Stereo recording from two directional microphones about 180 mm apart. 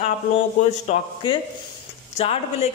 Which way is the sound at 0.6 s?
45° left (ahead or behind).